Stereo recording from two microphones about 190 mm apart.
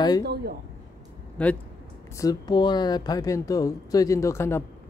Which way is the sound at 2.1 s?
20° left (ahead or behind).